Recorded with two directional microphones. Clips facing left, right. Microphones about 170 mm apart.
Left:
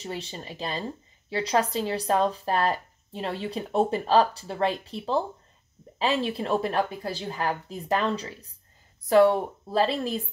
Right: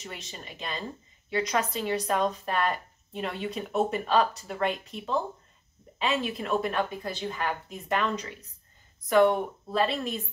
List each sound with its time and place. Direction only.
0.0 s speech: 30° left (ahead or behind)